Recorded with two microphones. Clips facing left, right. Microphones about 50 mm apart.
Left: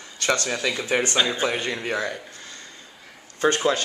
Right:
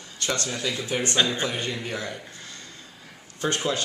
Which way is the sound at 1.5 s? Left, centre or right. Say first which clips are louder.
Left 4 dB; left.